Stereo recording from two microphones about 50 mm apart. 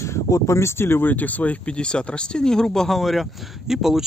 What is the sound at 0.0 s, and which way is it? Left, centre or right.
Speech, left.